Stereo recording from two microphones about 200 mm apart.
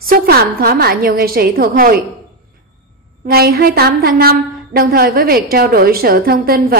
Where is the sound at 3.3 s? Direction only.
50° right (ahead or behind).